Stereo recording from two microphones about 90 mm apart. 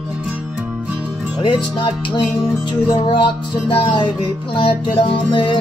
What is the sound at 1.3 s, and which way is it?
Music, 65° left (ahead or behind).